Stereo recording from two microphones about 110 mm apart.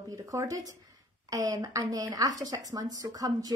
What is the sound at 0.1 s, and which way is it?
A woman's voice, 30° right (ahead or behind).